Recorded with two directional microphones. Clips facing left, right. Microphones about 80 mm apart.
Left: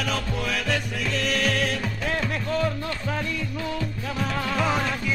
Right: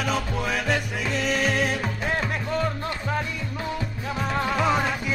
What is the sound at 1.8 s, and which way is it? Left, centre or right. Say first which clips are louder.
Music: right 1 dB; right.